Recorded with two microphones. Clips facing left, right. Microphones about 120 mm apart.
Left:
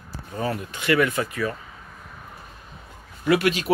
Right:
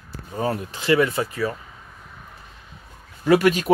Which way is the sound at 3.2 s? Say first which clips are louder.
Right 4 dB; 40° right (ahead or behind).